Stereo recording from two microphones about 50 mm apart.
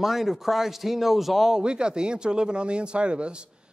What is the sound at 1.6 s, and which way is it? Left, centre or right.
Speech, centre.